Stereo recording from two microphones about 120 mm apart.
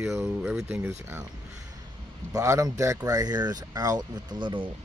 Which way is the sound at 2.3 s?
25° right (ahead or behind).